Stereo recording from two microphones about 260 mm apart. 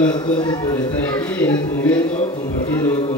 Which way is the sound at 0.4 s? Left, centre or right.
Centre.